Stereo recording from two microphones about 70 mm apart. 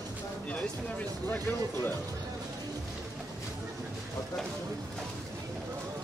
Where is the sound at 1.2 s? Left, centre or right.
Left.